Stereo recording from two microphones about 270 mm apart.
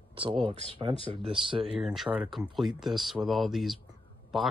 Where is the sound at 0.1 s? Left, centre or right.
Centre.